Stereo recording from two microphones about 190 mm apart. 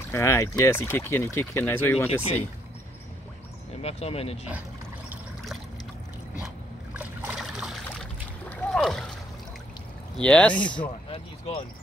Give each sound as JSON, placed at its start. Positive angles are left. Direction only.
{"t": 0.1, "sound": "speech", "side_deg": 15}
{"t": 3.8, "sound": "speech", "side_deg": 30}
{"t": 5.1, "sound": "trickle", "side_deg": 0}
{"t": 6.4, "sound": "a sound", "side_deg": -10}
{"t": 10.1, "sound": "speech", "side_deg": 5}